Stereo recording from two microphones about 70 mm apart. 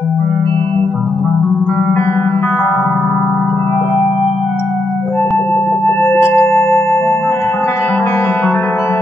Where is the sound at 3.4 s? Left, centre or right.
Left.